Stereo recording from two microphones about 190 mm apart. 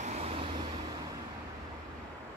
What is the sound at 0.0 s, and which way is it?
Vehicle, 35° right (ahead or behind).